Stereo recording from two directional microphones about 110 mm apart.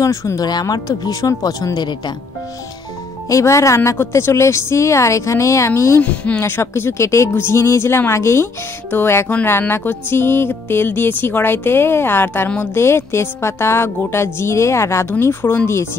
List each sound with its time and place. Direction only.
0.0 s speech: 30° left (ahead or behind)
0.5 s speech: 40° left (ahead or behind)
3.3 s speech: 30° left (ahead or behind)